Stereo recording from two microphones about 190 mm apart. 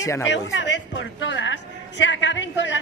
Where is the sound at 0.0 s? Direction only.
15° left (ahead or behind).